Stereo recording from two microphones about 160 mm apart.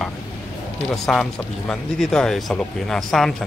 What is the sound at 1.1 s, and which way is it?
Speech, centre (ahead or behind).